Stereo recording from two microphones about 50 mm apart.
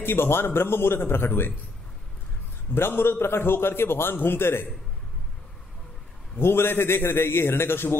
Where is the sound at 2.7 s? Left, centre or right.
Left.